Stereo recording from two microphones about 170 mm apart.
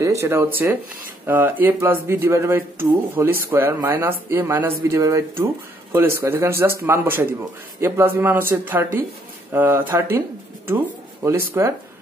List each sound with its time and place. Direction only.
0.0 s speech: 15° right (ahead or behind)
11.2 s speech: 15° right (ahead or behind)